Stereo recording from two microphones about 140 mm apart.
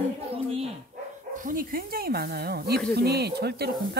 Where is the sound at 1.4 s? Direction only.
90° right.